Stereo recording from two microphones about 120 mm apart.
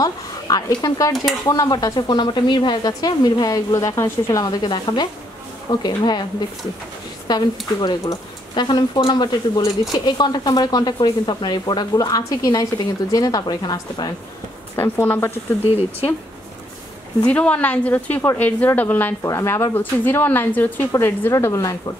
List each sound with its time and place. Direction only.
0.0 s speech: 30° left (ahead or behind)
7.2 s speech: 35° left (ahead or behind)
14.8 s a woman's voice: 20° left (ahead or behind)
15.6 s speech: 55° left (ahead or behind)
17.3 s a woman's voice: 10° left (ahead or behind); by 21.9 s 30° left (ahead or behind)